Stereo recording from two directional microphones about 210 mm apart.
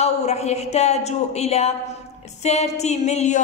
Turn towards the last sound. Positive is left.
turn(degrees=35)  # may be behind; listen again after turning